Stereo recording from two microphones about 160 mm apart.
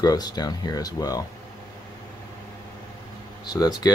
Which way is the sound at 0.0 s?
25° left (ahead or behind).